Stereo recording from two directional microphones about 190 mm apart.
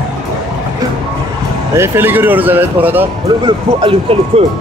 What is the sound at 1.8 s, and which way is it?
Speech, 10° right (ahead or behind).